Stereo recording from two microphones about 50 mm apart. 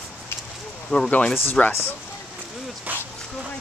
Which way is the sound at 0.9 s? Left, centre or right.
Centre.